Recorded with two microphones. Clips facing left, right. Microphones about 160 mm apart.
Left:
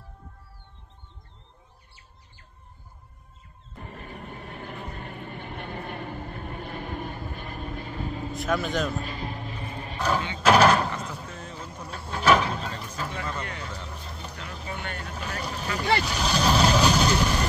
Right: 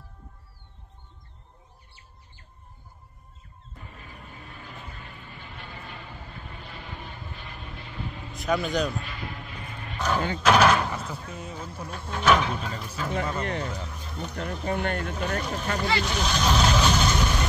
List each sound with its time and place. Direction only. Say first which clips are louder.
3.7 s vehicle: left 6 dB; 55° left (ahead or behind)
8.4 s speech: right 2 dB; centre (ahead or behind)
8.9 s vehicle: left 3 dB; 35° left (ahead or behind)
9.9 s vehicle: even; 5° left (ahead or behind)
10.4 s a sound: left 2 dB; centre (ahead or behind)
11.2 s speech: right 2 dB; 10° right (ahead or behind)
12.6 s speech: even; 10° right (ahead or behind)
13.4 s speech: right 6 dB; 40° right (ahead or behind)
16.1 s speech: even; 5° left (ahead or behind)
16.4 s vehicle: left 2 dB; 5° left (ahead or behind)